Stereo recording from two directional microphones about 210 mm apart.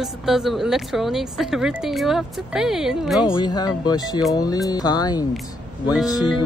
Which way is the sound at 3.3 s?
20° left (ahead or behind).